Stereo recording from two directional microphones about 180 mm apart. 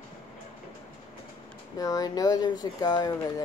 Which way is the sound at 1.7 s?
20° left (ahead or behind).